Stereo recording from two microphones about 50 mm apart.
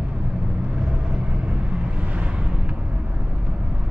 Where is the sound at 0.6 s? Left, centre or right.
Right.